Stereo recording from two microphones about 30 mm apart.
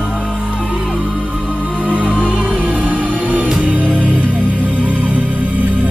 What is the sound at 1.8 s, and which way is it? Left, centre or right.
Music, right.